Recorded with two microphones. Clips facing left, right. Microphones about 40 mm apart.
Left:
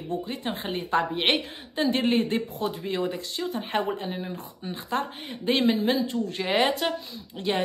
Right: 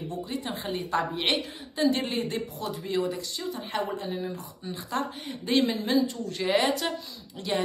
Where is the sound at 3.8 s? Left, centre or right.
Left.